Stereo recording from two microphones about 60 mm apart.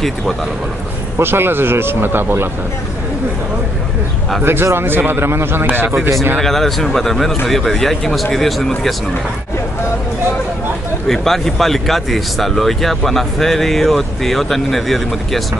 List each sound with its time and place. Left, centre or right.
1.1 s speech: right
4.4 s speech: right
6.4 s speech: centre
11.1 s speech: centre